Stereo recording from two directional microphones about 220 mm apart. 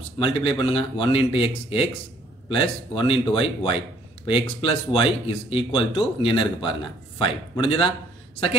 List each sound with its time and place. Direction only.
0.2 s speech: 25° left (ahead or behind)